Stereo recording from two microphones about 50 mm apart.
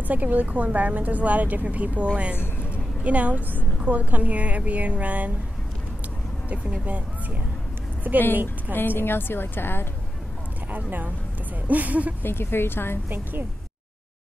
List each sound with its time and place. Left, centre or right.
0.1 s a woman's voice: right
2.3 s speech: left
2.7 s a sound: right
3.8 s a woman's voice: right
6.5 s speech: right
8.0 s a woman's voice: right
8.7 s a woman's voice: left
10.7 s a woman's voice: right
12.2 s a woman's voice: left
13.1 s a woman's voice: right